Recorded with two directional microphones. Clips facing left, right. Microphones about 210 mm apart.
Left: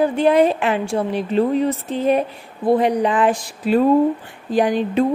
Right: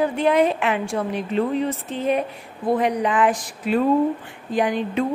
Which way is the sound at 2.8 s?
30° left (ahead or behind).